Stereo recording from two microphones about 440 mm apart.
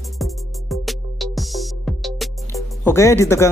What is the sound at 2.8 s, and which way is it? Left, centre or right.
Speech, centre.